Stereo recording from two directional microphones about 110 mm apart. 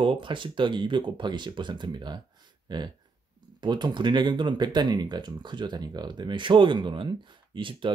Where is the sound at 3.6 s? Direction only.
45° right (ahead or behind).